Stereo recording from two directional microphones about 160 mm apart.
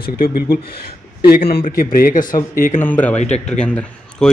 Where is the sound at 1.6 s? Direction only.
60° left (ahead or behind).